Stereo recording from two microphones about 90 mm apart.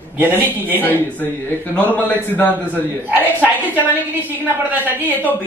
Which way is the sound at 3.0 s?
20° right (ahead or behind).